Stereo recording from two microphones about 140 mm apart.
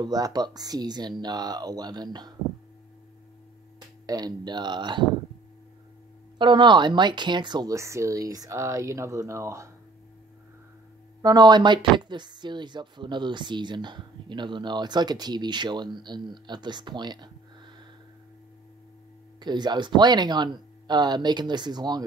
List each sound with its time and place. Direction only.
0.0 s speech: 30° right (ahead or behind)
4.0 s speech: 25° right (ahead or behind)
6.3 s speech: 35° right (ahead or behind)
11.2 s speech: 30° right (ahead or behind)
19.4 s speech: 30° right (ahead or behind)